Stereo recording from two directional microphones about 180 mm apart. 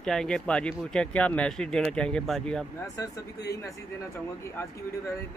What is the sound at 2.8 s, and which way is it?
A man's voice, 15° left (ahead or behind).